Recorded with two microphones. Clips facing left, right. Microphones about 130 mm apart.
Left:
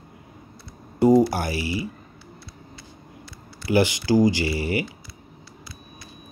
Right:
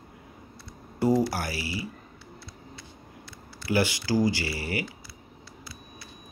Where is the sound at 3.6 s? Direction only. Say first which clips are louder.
Left 6 dB; 20° left (ahead or behind).